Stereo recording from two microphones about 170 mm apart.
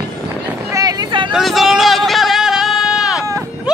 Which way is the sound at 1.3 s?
Centre (ahead or behind).